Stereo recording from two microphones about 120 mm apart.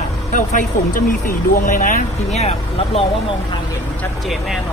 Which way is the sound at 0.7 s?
90° left.